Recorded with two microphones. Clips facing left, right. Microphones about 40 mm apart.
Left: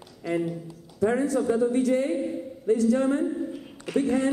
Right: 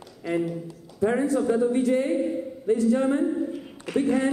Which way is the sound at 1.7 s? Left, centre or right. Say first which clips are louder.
Right 1 dB; right.